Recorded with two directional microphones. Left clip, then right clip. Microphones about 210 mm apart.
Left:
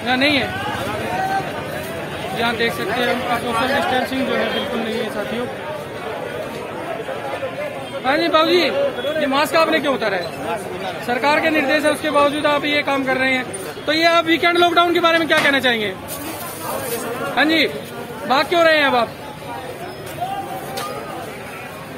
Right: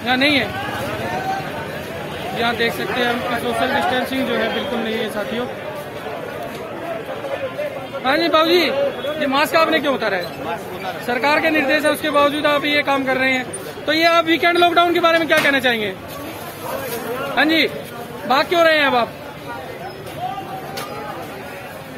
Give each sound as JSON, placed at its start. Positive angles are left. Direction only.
{"t": 0.0, "sound": "speech", "side_deg": -15}
{"t": 2.3, "sound": "speech", "side_deg": -15}
{"t": 8.0, "sound": "speech", "side_deg": -20}
{"t": 17.4, "sound": "speech", "side_deg": -10}